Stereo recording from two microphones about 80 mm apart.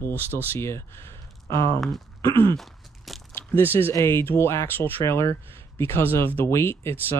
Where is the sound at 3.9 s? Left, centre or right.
Left.